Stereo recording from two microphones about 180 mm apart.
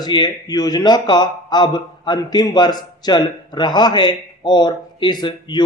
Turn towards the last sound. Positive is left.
turn(degrees=25)  # may be behind; listen again after turning